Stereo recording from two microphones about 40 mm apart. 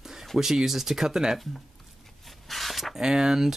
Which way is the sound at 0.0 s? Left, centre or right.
Centre.